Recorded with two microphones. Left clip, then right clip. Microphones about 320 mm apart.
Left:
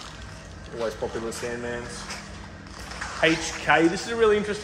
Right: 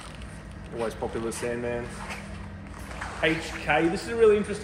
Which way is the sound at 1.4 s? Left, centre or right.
Right.